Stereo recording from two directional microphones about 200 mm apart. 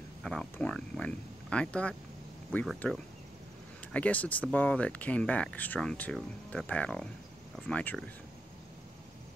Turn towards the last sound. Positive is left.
turn(degrees=5)  # may be behind; listen again after turning